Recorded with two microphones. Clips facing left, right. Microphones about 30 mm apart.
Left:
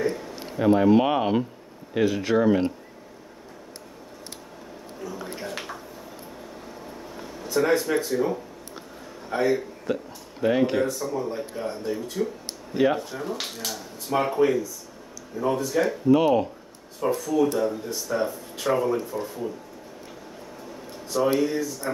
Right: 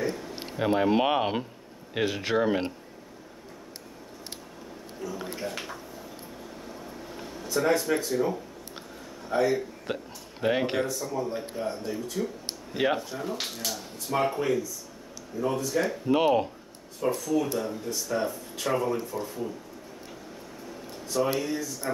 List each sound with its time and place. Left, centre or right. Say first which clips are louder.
0.0 s a sound: left 4 dB; centre
0.5 s speech: left 6 dB; right
5.0 s speech: even; centre
7.5 s speech: left 3 dB; centre
9.9 s speech: left 9 dB; right
10.9 s speech: left 2 dB; centre
16.1 s speech: left 4 dB; right
17.0 s speech: left 4 dB; centre
21.1 s speech: left 5 dB; centre